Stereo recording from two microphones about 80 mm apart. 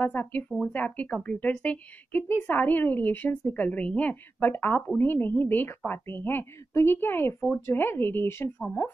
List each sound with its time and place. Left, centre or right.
0.0 s a woman's voice: left